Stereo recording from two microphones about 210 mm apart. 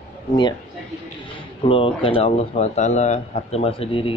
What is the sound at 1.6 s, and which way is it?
Speech, 25° left (ahead or behind).